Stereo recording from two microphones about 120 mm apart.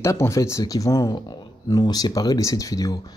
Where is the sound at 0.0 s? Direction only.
25° left (ahead or behind).